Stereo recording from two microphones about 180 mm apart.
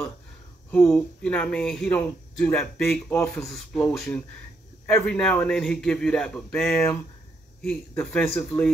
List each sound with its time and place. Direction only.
0.7 s speech: 10° left (ahead or behind)